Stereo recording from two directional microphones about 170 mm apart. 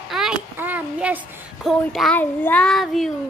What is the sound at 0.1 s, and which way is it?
A child's voice, 5° right (ahead or behind).